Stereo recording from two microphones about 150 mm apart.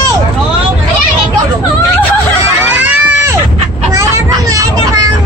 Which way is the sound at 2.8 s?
15° right (ahead or behind).